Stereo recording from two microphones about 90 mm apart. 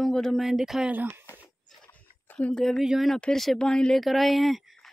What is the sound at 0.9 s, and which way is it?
Speech, 20° right (ahead or behind).